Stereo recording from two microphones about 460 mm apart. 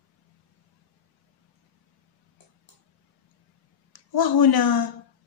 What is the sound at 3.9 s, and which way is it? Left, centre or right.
Speech, left.